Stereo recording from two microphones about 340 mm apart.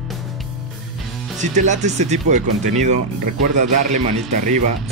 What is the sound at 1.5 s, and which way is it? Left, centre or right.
Speech, right.